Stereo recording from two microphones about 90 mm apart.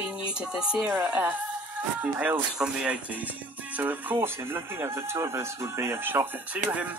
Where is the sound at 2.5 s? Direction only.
10° right (ahead or behind).